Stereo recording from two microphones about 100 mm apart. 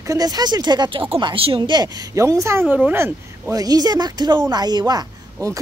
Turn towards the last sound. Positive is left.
turn(degrees=-35)  # may be behind; listen again after turning